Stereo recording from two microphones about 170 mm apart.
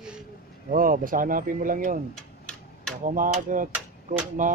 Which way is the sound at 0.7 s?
50° right (ahead or behind).